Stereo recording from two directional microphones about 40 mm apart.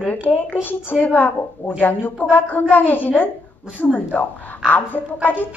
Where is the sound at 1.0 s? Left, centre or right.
Left.